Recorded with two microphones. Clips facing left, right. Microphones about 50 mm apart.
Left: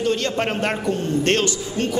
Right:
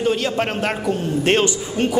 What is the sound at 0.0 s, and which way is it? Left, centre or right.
Speech, centre.